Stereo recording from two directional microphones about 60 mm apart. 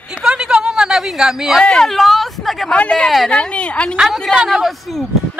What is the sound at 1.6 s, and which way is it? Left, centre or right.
Speech, centre.